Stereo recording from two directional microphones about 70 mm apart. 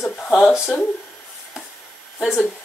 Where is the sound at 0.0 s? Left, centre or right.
Centre.